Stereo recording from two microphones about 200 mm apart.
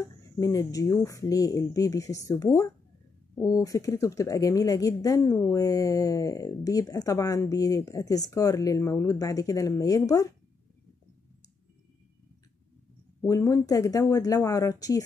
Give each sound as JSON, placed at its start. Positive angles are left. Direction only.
{"t": 0.0, "sound": "speech", "side_deg": 15}
{"t": 13.2, "sound": "speech", "side_deg": 15}